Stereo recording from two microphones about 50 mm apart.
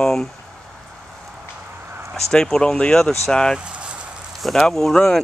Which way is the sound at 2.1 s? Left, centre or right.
Centre.